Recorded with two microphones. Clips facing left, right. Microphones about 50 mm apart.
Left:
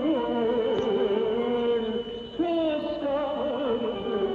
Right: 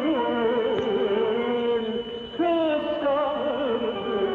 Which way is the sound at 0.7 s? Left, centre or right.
Right.